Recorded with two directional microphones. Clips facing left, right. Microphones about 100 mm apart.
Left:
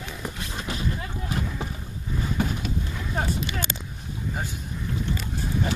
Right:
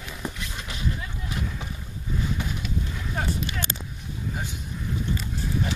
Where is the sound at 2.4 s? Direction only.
45° left (ahead or behind).